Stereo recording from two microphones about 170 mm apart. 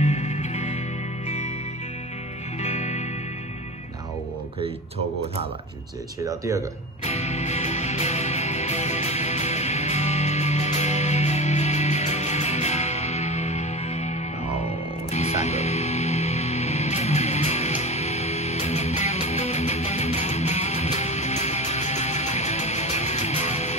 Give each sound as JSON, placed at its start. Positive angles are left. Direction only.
{"t": 0.0, "sound": "music", "side_deg": 40}
{"t": 2.6, "sound": "music", "side_deg": 40}
{"t": 6.2, "sound": "speech", "side_deg": -20}
{"t": 7.1, "sound": "music", "side_deg": 40}
{"t": 15.1, "sound": "music", "side_deg": 40}